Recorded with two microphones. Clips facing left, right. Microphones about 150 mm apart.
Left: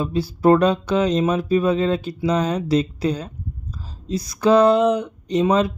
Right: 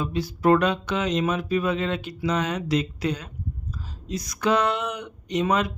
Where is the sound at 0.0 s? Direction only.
30° left (ahead or behind).